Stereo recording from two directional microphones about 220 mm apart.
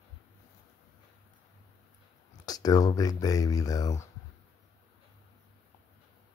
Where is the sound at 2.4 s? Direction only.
15° left (ahead or behind).